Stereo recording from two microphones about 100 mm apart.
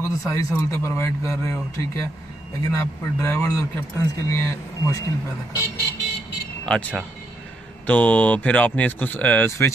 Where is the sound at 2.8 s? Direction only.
25° left (ahead or behind).